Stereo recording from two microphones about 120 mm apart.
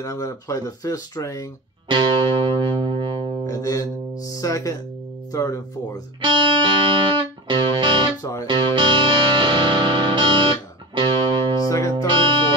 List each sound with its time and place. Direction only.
0.0 s speech: 30° left (ahead or behind)
1.9 s music: 40° right (ahead or behind)
3.4 s music: 30° left (ahead or behind)
4.2 s speech: 30° left (ahead or behind)
6.2 s music: 40° right (ahead or behind)
8.2 s speech: 30° left (ahead or behind)
8.5 s music: 40° right (ahead or behind)
11.6 s music: 30° left (ahead or behind)
12.1 s music: 40° right (ahead or behind)